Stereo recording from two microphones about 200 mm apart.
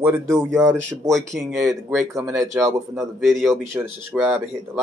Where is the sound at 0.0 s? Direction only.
10° right (ahead or behind).